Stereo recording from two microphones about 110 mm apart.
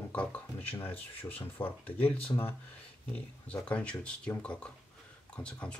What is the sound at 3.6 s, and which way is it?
Speech, 10° left (ahead or behind).